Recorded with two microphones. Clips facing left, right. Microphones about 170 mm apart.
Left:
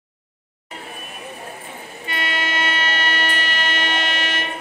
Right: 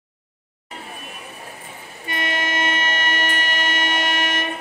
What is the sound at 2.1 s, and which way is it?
Train, 45° right (ahead or behind).